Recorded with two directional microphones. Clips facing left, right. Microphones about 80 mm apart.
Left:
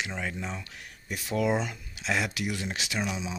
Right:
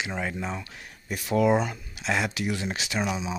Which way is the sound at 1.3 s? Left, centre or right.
Centre.